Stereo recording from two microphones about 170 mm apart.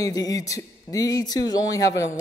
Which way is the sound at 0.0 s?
20° left (ahead or behind).